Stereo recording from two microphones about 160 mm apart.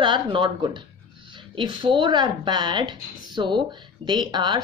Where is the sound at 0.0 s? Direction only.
30° right (ahead or behind).